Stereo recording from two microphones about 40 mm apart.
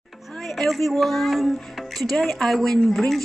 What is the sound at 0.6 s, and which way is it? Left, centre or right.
Speech, centre.